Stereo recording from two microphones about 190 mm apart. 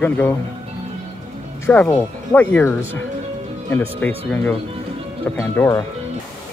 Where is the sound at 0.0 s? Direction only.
10° left (ahead or behind).